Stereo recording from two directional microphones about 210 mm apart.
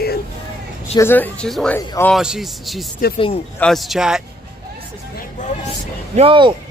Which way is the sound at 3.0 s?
45° left (ahead or behind).